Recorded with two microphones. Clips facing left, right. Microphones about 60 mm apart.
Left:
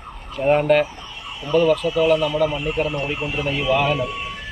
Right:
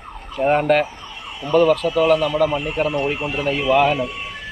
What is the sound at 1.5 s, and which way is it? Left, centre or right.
Speech, right.